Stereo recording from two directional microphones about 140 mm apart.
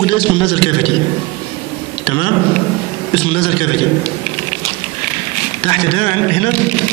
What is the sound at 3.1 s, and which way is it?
Speech, 40° left (ahead or behind).